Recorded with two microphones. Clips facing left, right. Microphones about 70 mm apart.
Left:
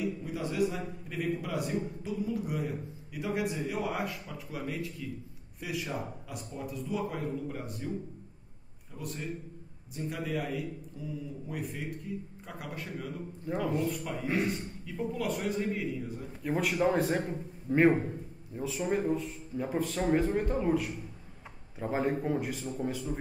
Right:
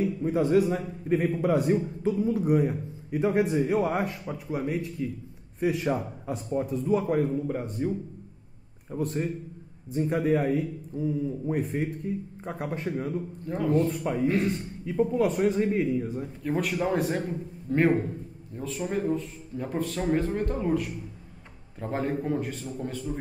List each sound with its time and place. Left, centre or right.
0.0 s a man's voice: right
7.8 s speech: right
8.9 s a man's voice: right
13.5 s speech: centre
13.8 s speech: right
14.2 s speech: centre
15.1 s a man's voice: right
16.4 s speech: centre